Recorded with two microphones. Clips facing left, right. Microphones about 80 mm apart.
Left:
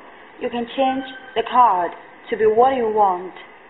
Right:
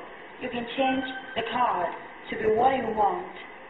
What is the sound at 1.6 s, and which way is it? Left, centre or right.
Speech, left.